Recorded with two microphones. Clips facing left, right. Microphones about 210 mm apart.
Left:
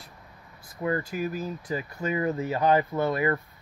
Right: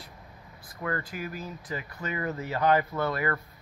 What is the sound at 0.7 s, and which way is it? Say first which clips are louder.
Speech: left 5 dB; 20° left (ahead or behind).